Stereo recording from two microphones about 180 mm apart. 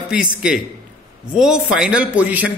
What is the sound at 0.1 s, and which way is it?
A man's voice, 5° right (ahead or behind).